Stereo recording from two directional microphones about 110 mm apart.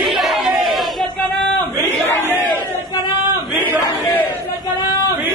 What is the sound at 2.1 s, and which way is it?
Speech, 20° left (ahead or behind).